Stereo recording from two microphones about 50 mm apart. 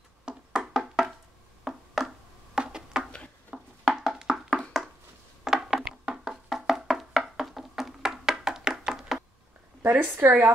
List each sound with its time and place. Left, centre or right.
0.2 s music: centre
1.6 s a sound: centre
6.0 s music: centre
10.1 s speech: right